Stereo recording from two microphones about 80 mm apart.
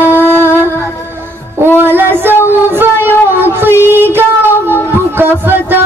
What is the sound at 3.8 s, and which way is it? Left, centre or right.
Music, right.